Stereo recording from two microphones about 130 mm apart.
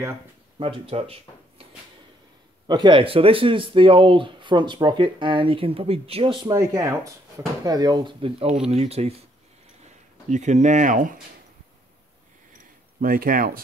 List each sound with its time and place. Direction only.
0.6 s speech: 45° right (ahead or behind)
2.6 s speech: 35° right (ahead or behind)
6.5 s speech: 25° right (ahead or behind); by 9.1 s 50° right (ahead or behind)
10.3 s speech: 65° right (ahead or behind); by 11.1 s 85° right
13.0 s speech: 90° right